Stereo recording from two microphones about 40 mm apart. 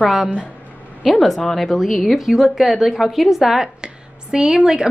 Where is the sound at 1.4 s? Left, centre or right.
Centre.